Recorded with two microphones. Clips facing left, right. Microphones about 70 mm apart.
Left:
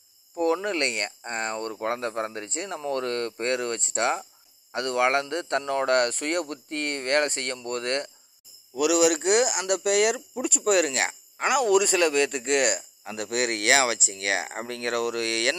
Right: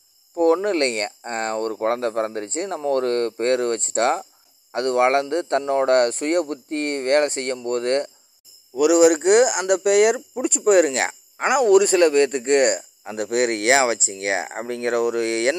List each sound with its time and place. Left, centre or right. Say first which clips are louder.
0.7 s a man's voice: right 6 dB; right
10.3 s speech: right 7 dB; right
11.6 s a man's voice: right 8 dB; right